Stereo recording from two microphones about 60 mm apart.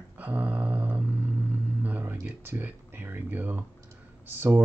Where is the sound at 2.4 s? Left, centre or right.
Right.